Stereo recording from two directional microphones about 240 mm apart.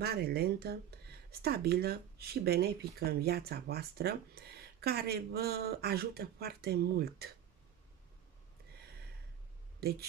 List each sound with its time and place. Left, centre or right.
0.0 s speech: right
9.8 s speech: right